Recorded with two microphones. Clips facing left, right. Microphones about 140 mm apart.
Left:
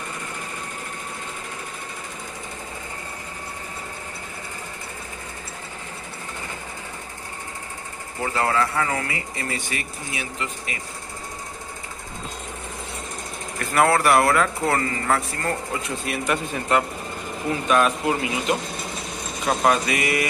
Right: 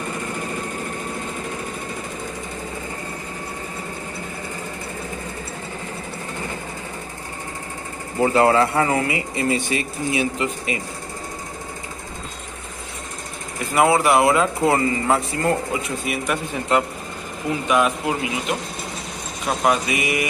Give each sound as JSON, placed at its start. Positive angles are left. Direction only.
{"t": 8.2, "sound": "speech", "side_deg": -20}
{"t": 13.6, "sound": "speech", "side_deg": -15}
{"t": 15.7, "sound": "speech", "side_deg": -5}
{"t": 16.7, "sound": "speech", "side_deg": -20}